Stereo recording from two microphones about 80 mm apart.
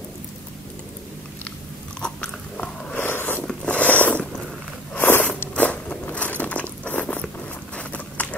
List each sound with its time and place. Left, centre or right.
2.0 s biting: centre
3.0 s zipper: left
3.4 s mechanisms: centre
4.9 s biting: left
5.5 s biting: centre
7.7 s a sound: centre